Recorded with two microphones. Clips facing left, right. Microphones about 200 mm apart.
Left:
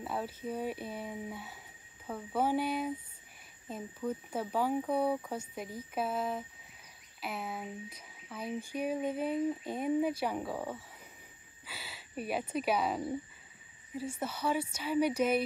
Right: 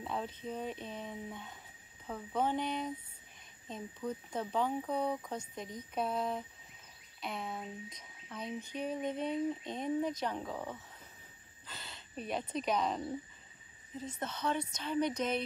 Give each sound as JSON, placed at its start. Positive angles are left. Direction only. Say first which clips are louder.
{"t": 0.0, "sound": "speech", "louder": "left 2 dB", "side_deg": 5}